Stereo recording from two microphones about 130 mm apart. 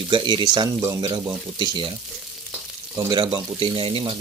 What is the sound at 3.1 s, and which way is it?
Speech, 40° right (ahead or behind).